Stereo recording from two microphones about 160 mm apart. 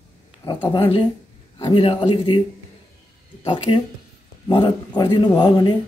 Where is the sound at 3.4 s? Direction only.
30° left (ahead or behind).